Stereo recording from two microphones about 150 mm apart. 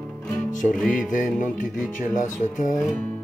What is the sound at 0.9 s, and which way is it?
Speech, 60° left (ahead or behind).